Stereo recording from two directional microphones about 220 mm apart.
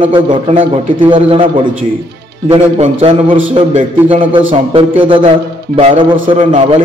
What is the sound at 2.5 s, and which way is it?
A man's voice, 25° right (ahead or behind).